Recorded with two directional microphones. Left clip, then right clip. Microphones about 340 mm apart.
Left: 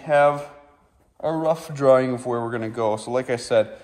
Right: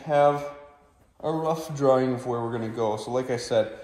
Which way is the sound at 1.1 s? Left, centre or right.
Left.